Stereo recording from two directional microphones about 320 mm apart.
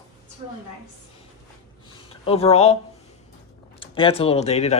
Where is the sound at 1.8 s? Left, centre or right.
Centre.